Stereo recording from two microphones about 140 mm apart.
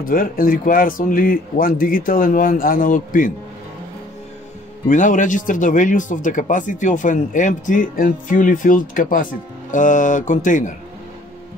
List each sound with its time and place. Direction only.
0.0 s speech: 80° left
4.8 s speech: 65° left (ahead or behind)